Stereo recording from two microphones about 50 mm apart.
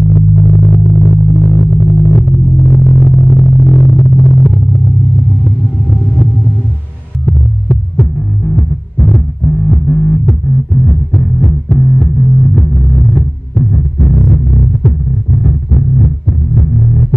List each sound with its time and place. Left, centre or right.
0.1 s a sound: left
4.3 s vehicle: left
7.2 s heart sounds: left
8.5 s music: centre
13.9 s a sound: centre
15.3 s vehicle: centre
16.5 s throbbing: centre